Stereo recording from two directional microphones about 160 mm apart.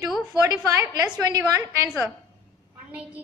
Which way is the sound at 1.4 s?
10° right (ahead or behind).